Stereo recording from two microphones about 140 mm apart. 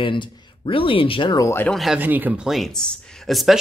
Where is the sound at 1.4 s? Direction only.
20° left (ahead or behind).